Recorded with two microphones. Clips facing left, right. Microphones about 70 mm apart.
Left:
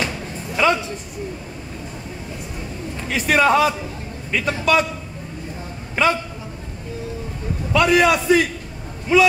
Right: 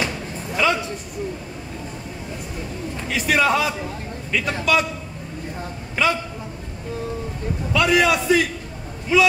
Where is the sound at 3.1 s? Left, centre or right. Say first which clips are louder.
Left 3 dB; left.